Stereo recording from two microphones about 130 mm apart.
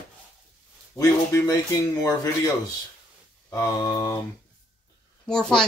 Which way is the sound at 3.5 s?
30° left (ahead or behind).